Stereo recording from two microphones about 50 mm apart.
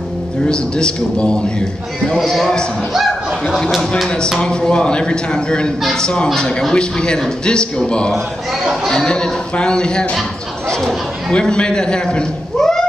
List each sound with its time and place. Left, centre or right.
0.5 s a man's voice: centre
2.9 s a sound: centre
4.4 s a man's voice: centre
10.7 s chatter: centre
11.3 s a man's voice: centre